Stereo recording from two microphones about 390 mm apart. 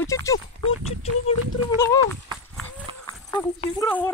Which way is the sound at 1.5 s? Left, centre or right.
Centre.